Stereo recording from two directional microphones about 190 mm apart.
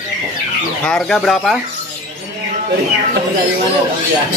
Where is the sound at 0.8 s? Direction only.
5° left (ahead or behind).